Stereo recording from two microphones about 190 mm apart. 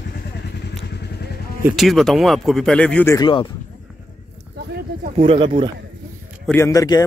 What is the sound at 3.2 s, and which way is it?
Speech, 25° left (ahead or behind).